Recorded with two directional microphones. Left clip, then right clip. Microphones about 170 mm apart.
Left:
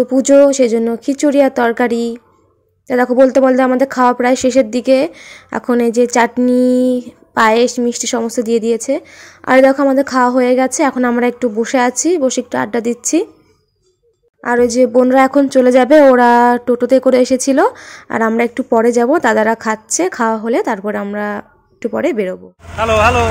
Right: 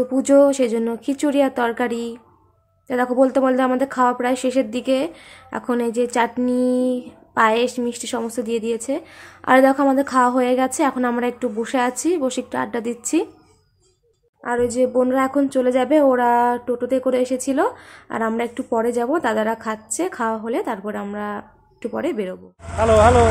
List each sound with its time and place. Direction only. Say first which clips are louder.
0.1 s speech: left 5 dB; 30° left (ahead or behind)
14.4 s speech: left 8 dB; 40° left (ahead or behind)
22.8 s speech: left 2 dB; 15° right (ahead or behind)